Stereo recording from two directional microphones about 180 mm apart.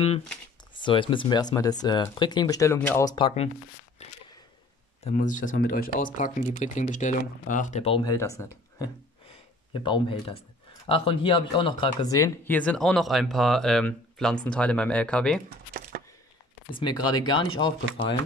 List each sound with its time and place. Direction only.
0.7 s speech: 30° left (ahead or behind); by 3.1 s 10° left (ahead or behind)
3.1 s speech: 30° left (ahead or behind)
4.0 s a sound: 40° left (ahead or behind)
5.0 s speech: 45° left (ahead or behind)
5.4 s speech: 90° left
5.7 s speech: 50° left (ahead or behind)
8.0 s speech: 20° left (ahead or behind)
15.5 s a sound: 60° right (ahead or behind)
16.7 s speech: 25° left (ahead or behind)